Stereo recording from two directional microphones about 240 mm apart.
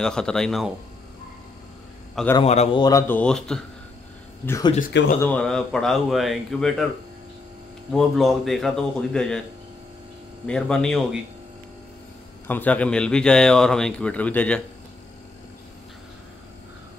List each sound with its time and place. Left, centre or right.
0.0 s a man's voice: centre
2.3 s a man's voice: left; by 3.6 s centre
4.5 s a man's voice: centre
4.7 s speech: left
5.2 s a man's voice: centre
7.9 s a man's voice: centre
10.4 s a man's voice: centre
12.4 s a man's voice: centre